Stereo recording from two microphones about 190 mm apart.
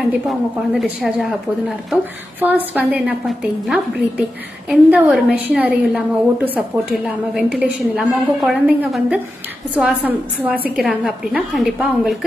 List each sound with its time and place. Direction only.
0.3 s a woman's voice: centre (ahead or behind)
2.4 s a woman's voice: 10° right (ahead or behind)